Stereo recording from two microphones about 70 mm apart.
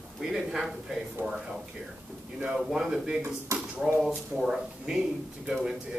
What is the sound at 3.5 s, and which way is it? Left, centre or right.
Speech, right.